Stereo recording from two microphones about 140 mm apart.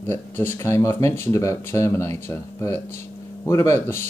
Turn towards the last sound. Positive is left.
turn(degrees=20)  # may be behind; listen again after turning